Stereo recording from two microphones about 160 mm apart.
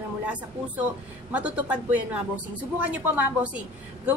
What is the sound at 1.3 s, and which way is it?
A woman's voice, 10° right (ahead or behind).